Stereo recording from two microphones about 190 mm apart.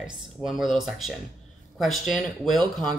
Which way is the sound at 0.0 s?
Centre (ahead or behind).